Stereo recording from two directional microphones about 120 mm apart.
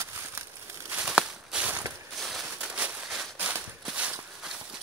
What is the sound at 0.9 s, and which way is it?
Walk, 5° right (ahead or behind).